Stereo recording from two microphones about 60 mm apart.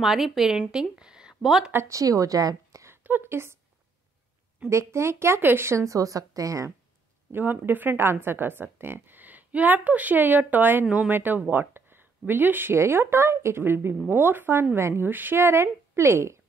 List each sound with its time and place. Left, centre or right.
0.0 s speech: centre
0.9 s a sound: centre
1.4 s speech: centre
1.9 s a woman's voice: right
2.9 s a sound: right
4.6 s a woman's voice: right
7.6 s a woman's voice: right
15.0 s speech: right